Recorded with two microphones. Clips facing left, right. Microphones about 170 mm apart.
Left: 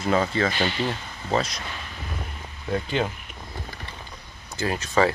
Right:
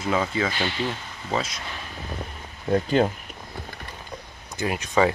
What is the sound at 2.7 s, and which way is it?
Speech, 45° right (ahead or behind).